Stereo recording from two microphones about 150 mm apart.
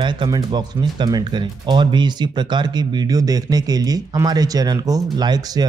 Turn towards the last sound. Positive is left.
turn(degrees=-30)  # may be behind; listen again after turning